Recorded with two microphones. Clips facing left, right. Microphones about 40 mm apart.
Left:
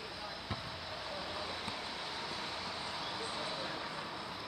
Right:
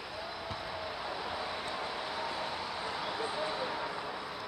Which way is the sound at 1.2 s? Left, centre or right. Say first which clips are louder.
Right 4 dB; centre.